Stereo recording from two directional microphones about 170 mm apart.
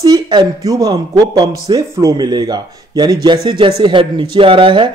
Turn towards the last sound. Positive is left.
turn(degrees=-30)  # may be behind; listen again after turning